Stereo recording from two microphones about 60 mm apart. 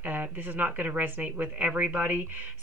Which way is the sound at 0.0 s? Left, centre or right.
Right.